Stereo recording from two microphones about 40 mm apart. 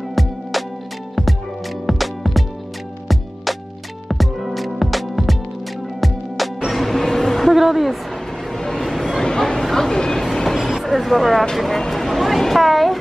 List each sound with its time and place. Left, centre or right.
0.1 s music: centre
1.9 s music: centre
4.1 s music: centre
6.7 s train: centre
7.5 s a sound: centre
8.5 s vehicle: centre
8.8 s a sound: centre
9.2 s a sound: centre
10.2 s train: centre
10.6 s vehicle: centre
11.5 s speech: centre